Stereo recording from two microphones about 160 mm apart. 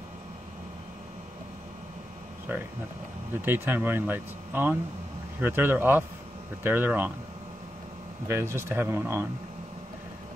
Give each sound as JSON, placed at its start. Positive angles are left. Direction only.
{"t": 2.5, "sound": "speech", "side_deg": -10}
{"t": 8.3, "sound": "speech", "side_deg": -15}